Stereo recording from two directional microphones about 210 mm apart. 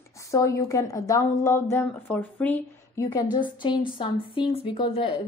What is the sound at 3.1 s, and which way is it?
A woman's voice, 20° left (ahead or behind).